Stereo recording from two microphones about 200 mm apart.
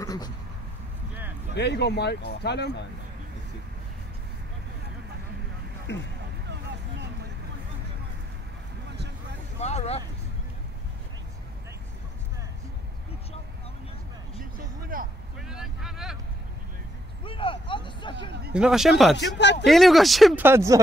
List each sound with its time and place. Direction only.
0.0 s a sound: 20° left (ahead or behind)
1.5 s speech: 55° left (ahead or behind)
5.9 s speech: 60° left (ahead or behind)
9.6 s a sound: 35° left (ahead or behind)
14.8 s vehicle: 45° right (ahead or behind)
15.3 s vehicle: 5° right (ahead or behind)
17.2 s vehicle: 25° left (ahead or behind)
18.5 s speech: 5° right (ahead or behind)
19.1 s speech: 60° left (ahead or behind)
19.6 s speech: centre (ahead or behind)
20.4 s speech: 15° right (ahead or behind)